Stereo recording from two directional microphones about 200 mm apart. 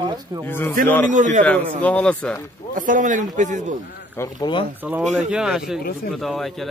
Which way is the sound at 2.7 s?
40° right (ahead or behind).